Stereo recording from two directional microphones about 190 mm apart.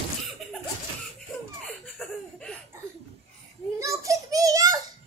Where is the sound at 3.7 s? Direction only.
15° right (ahead or behind).